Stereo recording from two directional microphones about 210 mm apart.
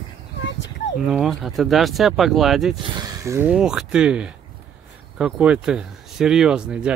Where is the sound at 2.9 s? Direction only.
20° right (ahead or behind).